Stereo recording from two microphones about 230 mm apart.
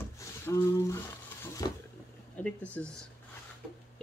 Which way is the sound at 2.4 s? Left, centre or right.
Centre.